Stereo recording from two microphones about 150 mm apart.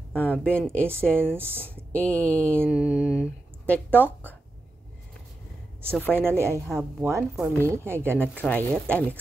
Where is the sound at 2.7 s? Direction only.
5° right (ahead or behind).